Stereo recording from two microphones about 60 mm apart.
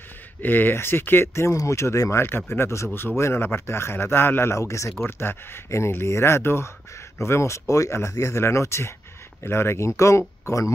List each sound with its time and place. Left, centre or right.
0.4 s speech: left
1.3 s speech: left
5.0 s speech: left